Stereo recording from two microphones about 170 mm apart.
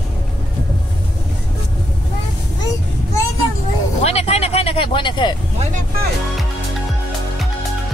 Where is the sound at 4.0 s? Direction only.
40° left (ahead or behind).